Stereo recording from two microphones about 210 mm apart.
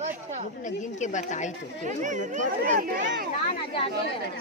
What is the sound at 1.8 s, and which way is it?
Speech, 35° right (ahead or behind).